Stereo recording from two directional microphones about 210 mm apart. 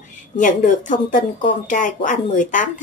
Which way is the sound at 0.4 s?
40° left (ahead or behind).